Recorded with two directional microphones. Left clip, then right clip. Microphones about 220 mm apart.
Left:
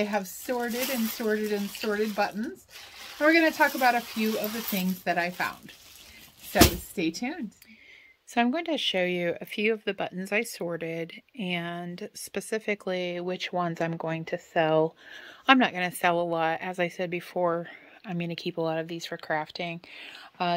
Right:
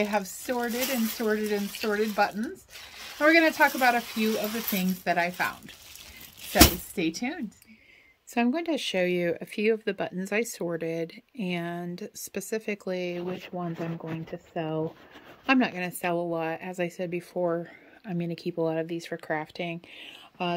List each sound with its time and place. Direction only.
0.0 s speech: 5° right (ahead or behind)
13.5 s speech: 25° left (ahead or behind)
15.4 s speech: 5° left (ahead or behind)